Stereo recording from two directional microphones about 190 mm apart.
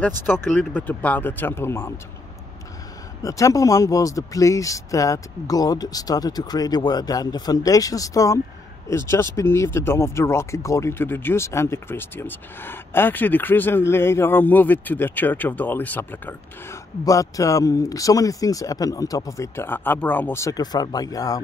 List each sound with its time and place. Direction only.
0.0 s speech: 10° left (ahead or behind)
3.2 s speech: 15° left (ahead or behind)